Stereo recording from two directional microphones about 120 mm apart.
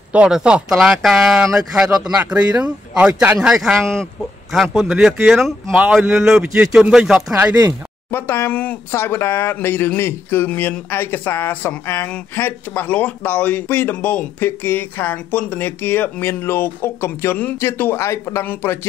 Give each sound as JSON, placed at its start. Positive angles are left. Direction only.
{"t": 0.1, "sound": "speech", "side_deg": -10}
{"t": 8.1, "sound": "speech", "side_deg": 20}